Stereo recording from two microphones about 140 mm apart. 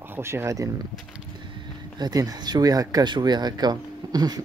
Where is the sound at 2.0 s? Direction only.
25° right (ahead or behind).